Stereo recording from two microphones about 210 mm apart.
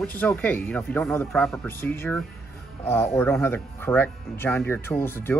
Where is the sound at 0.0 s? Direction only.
10° left (ahead or behind).